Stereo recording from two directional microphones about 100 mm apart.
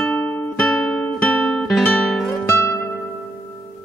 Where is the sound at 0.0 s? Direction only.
5° left (ahead or behind).